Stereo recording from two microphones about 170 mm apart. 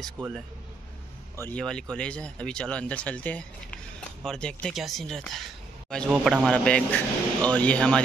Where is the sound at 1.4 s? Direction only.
5° left (ahead or behind).